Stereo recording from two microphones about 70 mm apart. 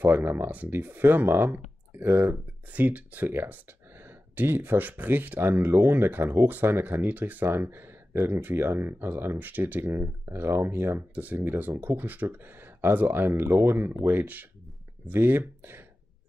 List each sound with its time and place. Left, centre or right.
0.0 s speech: right